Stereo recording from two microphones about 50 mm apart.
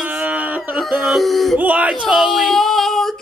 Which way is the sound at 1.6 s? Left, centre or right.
Right.